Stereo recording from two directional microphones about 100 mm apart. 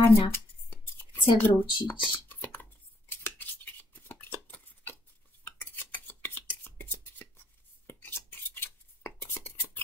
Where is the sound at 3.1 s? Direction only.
20° left (ahead or behind).